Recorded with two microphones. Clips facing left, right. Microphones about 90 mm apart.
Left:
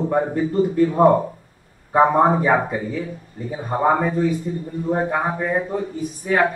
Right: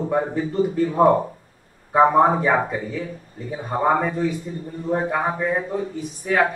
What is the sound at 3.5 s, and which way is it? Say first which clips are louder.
A man's voice: left 1 dB; 5° left (ahead or behind).